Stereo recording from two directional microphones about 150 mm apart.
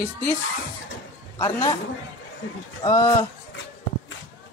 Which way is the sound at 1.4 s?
25° left (ahead or behind).